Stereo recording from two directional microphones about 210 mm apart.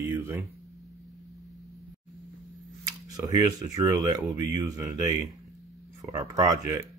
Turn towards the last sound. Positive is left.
turn(degrees=-15)  # may be behind; listen again after turning